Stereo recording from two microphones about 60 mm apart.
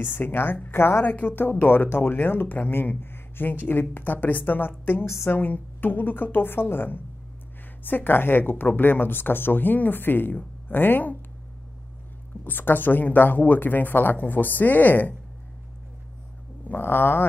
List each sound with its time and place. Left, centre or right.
0.0 s speech: left
5.0 s a woman's voice: left
5.3 s speech: left
12.4 s speech: left
16.6 s speech: left